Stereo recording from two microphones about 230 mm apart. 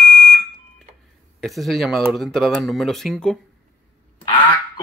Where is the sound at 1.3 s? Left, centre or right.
Centre.